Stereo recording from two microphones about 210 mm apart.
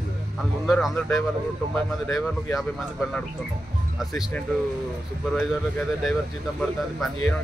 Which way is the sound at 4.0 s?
Centre (ahead or behind).